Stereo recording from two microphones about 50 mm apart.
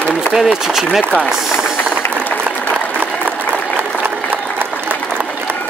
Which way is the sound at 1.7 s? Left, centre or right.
Left.